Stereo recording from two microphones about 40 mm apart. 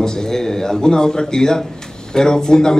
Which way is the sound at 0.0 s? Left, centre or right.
Centre.